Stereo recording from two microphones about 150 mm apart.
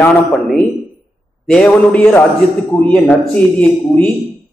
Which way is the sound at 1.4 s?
5° left (ahead or behind).